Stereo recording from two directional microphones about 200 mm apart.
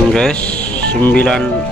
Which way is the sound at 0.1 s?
5° left (ahead or behind).